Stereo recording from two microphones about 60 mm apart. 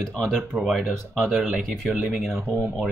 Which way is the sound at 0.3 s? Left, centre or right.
Centre.